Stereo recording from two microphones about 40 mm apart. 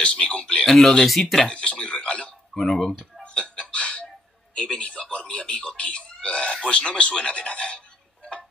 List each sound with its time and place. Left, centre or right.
0.0 s speech: left
0.7 s speech: centre
1.4 s speech: left
2.5 s speech: centre
3.2 s music: left
4.6 s speech: left